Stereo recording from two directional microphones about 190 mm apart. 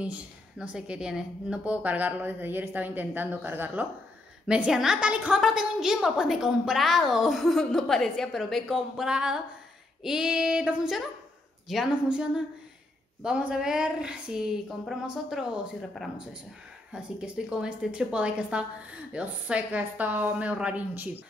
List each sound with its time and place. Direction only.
0.0 s a woman's voice: 5° right (ahead or behind)